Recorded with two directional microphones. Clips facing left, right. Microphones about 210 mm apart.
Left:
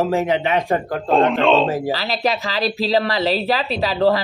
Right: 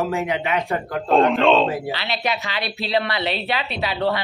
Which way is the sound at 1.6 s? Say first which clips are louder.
Left 4 dB; 40° left (ahead or behind).